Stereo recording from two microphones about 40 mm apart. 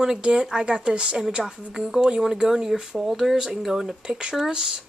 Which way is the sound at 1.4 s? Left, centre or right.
Centre.